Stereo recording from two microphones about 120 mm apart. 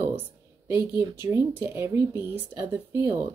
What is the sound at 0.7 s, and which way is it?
Speech, 20° right (ahead or behind).